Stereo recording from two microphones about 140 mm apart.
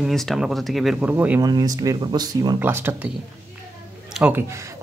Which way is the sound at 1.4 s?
25° right (ahead or behind).